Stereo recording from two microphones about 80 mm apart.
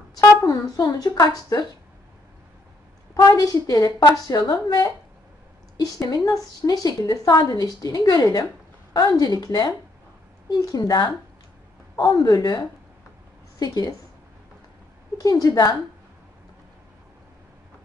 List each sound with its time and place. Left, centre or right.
0.2 s a woman's voice: left
3.2 s a woman's voice: left
15.2 s a woman's voice: left